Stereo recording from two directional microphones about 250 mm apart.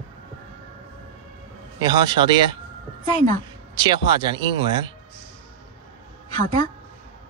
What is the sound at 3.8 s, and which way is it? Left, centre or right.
Speech, centre.